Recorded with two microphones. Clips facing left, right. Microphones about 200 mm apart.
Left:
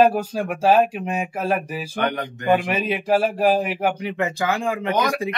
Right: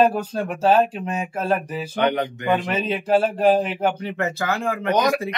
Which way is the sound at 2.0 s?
20° right (ahead or behind).